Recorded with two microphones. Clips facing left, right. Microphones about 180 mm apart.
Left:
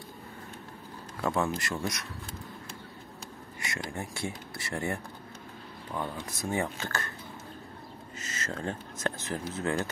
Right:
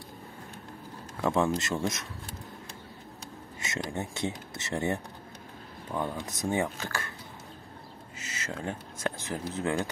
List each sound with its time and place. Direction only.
1.2 s speech: 20° right (ahead or behind)
3.5 s speech: 25° right (ahead or behind)
8.2 s speech: 10° right (ahead or behind)